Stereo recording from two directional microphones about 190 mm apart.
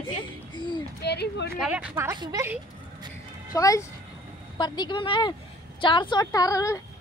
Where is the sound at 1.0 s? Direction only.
60° left (ahead or behind).